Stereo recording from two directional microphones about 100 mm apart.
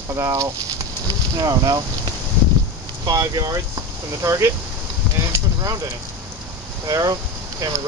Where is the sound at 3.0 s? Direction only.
40° right (ahead or behind).